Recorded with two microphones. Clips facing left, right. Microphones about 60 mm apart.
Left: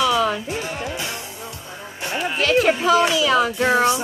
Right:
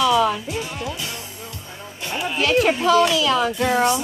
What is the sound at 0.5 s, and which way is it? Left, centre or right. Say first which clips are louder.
Music: left 1 dB; left.